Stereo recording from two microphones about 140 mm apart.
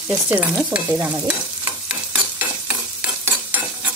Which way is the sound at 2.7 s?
10° right (ahead or behind).